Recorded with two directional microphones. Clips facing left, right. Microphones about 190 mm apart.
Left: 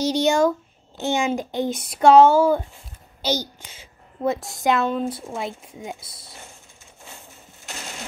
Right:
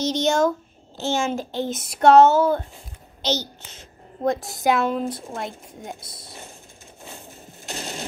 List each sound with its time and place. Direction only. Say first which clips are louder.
0.1 s a child's voice: left 1 dB; 10° left (ahead or behind)
4.3 s a woman's voice: even; centre (ahead or behind)
7.6 s a sound: right 4 dB; 35° right (ahead or behind)